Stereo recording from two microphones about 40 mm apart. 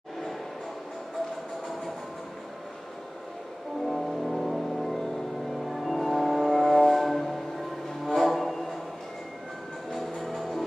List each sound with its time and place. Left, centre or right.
3.9 s music: centre
5.7 s vehicle: centre
8.0 s train: centre
9.9 s music: centre